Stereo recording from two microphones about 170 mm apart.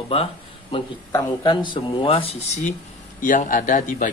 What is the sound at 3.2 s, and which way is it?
Speech, 50° left (ahead or behind).